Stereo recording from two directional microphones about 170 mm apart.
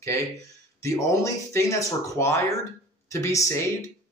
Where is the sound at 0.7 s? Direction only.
20° left (ahead or behind).